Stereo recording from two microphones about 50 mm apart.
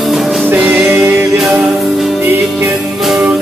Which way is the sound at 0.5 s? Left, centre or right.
Right.